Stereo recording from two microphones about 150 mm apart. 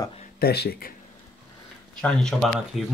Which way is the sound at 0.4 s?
90° left.